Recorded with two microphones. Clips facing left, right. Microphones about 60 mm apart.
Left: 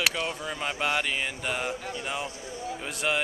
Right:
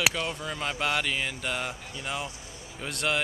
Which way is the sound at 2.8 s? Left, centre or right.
Centre.